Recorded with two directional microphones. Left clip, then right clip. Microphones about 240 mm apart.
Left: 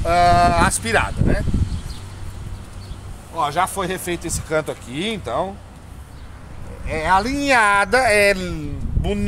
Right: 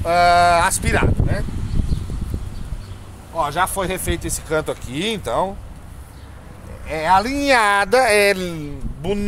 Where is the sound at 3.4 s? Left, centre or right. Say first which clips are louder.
Even; centre; by 5.5 s right.